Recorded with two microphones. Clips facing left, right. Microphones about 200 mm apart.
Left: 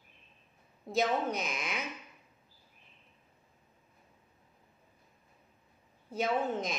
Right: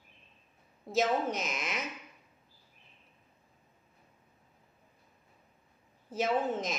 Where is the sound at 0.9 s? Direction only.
Centre (ahead or behind).